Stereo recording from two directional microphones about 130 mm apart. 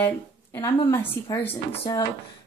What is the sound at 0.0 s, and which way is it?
Speech, 20° left (ahead or behind).